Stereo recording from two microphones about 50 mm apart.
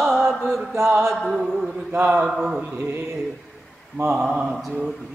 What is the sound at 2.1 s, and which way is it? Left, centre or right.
Speech, centre.